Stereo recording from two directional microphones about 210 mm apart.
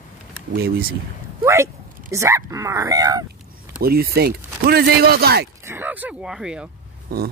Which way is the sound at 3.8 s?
45° right (ahead or behind).